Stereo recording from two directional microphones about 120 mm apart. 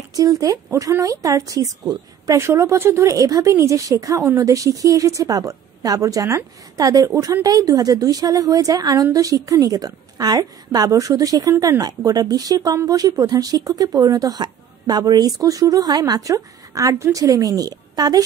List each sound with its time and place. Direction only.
0.1 s speech: 30° right (ahead or behind)
11.5 s speech: 20° right (ahead or behind)
11.8 s speech: 35° right (ahead or behind)